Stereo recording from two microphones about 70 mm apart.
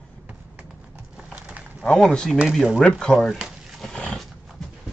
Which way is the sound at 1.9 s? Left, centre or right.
Centre.